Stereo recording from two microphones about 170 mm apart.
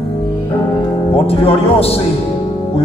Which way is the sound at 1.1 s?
35° left (ahead or behind).